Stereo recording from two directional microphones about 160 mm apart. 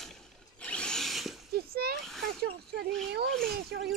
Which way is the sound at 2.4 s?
90° right.